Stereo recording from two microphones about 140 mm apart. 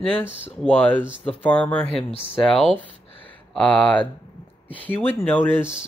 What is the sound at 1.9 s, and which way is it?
Speech, 40° left (ahead or behind).